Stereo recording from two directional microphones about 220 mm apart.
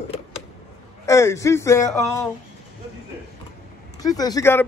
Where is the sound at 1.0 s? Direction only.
15° left (ahead or behind).